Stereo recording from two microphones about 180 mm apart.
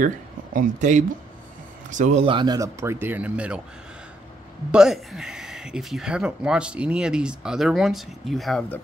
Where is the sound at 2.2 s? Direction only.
25° right (ahead or behind); by 3.6 s 5° right (ahead or behind).